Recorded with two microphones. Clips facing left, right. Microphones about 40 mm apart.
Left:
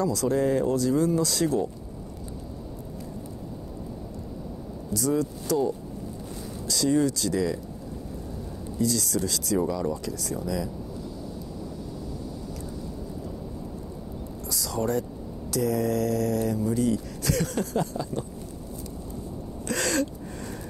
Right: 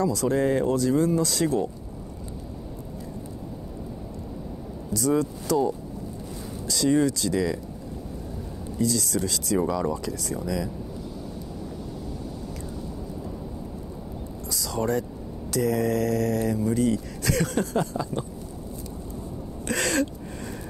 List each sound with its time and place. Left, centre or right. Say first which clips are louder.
0.0 s speech: right 1 dB; right
5.0 s speech: right 2 dB; right
6.7 s speech: right 2 dB; right
8.8 s speech: right 1 dB; left
9.1 s speech: right 1 dB; right
14.6 s speech: right 1 dB; right
19.7 s a sound: right 1 dB; right